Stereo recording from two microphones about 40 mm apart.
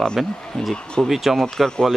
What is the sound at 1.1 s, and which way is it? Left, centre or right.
Speech, centre.